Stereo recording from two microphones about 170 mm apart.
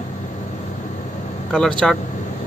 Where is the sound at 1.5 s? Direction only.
5° left (ahead or behind).